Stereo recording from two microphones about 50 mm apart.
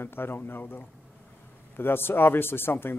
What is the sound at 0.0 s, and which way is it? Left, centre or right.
A man's voice, left.